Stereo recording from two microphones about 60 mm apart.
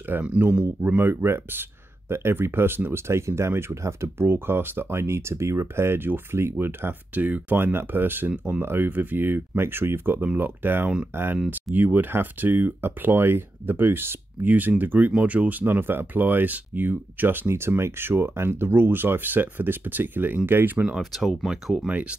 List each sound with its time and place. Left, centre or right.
0.1 s speech: right
1.0 s speech: right
15.6 s speech: right
17.5 s speech: right
21.0 s speech: centre
21.5 s speech: centre
21.8 s speech: right